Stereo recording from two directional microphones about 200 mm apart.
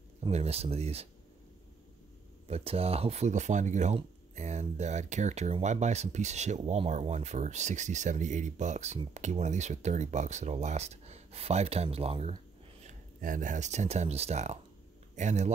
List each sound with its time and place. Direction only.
0.3 s speech: 30° right (ahead or behind)
2.4 s speech: 30° right (ahead or behind)
12.8 s speech: 40° right (ahead or behind)